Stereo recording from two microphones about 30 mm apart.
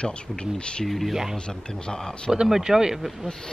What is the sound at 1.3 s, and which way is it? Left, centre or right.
Speech, left.